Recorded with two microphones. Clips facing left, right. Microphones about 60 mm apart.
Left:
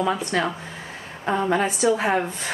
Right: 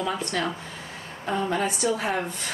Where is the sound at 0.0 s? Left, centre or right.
Left.